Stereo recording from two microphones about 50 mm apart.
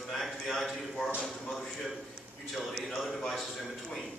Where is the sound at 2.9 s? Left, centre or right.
Centre.